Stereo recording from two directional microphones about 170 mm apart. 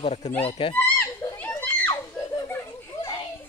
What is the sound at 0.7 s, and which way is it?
Children playing, 15° left (ahead or behind).